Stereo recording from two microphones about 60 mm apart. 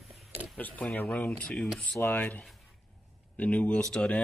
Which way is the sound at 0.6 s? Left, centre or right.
Left.